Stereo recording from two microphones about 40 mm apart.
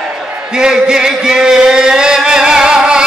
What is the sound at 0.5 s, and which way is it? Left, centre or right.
Music, right.